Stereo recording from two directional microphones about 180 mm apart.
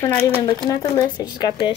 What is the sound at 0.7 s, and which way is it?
Speech, 20° left (ahead or behind).